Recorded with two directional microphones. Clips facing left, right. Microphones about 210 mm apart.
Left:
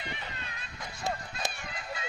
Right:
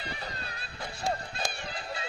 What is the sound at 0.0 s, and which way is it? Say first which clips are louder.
Music: right 2 dB; 35° right (ahead or behind).